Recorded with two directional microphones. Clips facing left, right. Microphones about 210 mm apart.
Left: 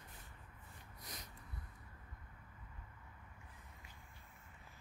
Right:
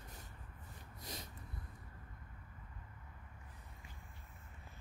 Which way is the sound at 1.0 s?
25° right (ahead or behind).